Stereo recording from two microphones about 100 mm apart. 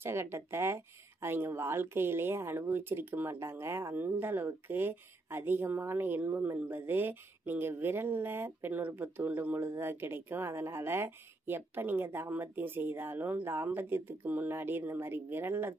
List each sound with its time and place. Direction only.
0.0 s speech: 25° right (ahead or behind)